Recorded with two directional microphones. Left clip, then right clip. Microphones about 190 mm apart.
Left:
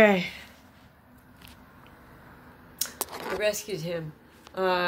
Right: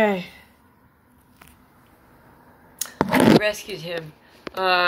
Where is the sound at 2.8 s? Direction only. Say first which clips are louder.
Right 1 dB; 30° left (ahead or behind).